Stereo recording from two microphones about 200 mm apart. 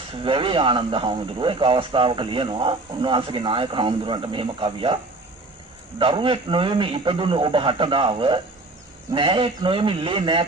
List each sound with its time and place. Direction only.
0.2 s speech: 25° right (ahead or behind)
5.9 s speech: 25° right (ahead or behind)